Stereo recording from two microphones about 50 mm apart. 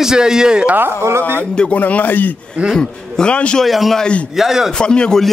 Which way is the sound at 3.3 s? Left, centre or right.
Left.